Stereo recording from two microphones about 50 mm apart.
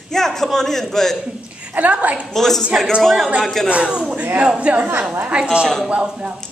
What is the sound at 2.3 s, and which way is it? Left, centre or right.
A man's voice, centre.